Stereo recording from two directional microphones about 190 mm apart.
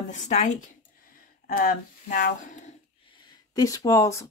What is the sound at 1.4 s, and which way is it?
Speech, 50° left (ahead or behind).